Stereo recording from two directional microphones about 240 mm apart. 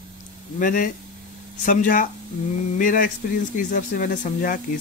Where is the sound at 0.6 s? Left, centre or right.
Left.